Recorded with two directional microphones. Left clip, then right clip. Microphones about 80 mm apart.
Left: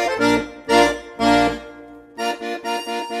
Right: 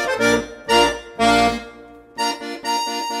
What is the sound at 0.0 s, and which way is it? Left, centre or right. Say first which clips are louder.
Accordion: even; left.